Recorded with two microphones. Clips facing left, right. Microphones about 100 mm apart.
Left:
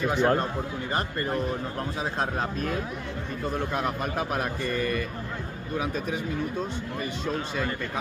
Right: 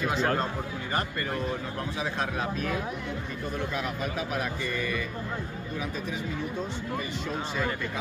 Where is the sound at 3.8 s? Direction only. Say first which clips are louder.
Left 3 dB; 50° left (ahead or behind).